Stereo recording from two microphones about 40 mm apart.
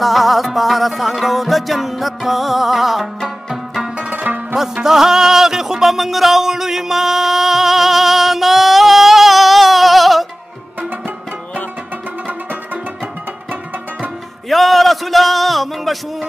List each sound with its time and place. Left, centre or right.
0.0 s music: centre
4.0 s music: right
4.8 s music: centre
14.5 s a sound: centre